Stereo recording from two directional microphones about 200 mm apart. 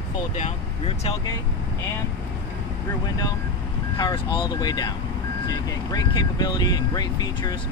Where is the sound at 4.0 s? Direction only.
25° left (ahead or behind).